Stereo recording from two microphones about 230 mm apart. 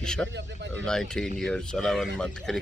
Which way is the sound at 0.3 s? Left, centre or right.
Right.